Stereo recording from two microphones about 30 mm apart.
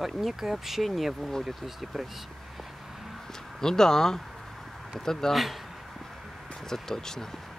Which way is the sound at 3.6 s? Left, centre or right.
Centre.